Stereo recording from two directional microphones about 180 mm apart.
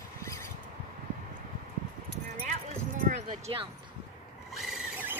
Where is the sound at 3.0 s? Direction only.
45° right (ahead or behind).